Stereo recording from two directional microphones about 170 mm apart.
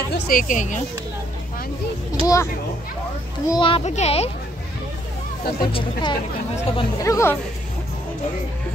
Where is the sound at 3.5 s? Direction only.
30° left (ahead or behind).